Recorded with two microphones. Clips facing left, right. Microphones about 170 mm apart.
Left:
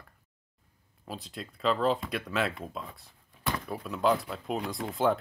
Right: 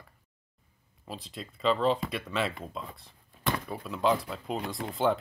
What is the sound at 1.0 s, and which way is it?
Speech, centre (ahead or behind).